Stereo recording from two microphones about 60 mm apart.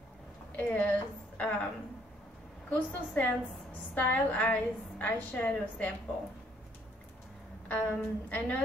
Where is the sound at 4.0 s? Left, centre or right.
Left.